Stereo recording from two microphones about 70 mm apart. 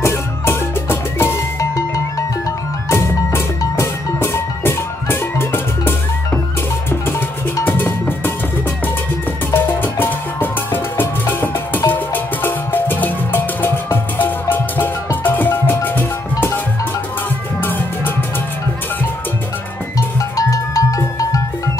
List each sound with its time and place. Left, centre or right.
0.0 s music: left
2.9 s music: left
7.6 s cowbell: left
9.5 s music: left
17.6 s music: left
20.0 s music: left